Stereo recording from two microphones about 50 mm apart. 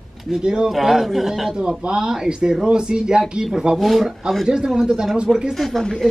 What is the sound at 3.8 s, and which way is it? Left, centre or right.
A man's voice, centre.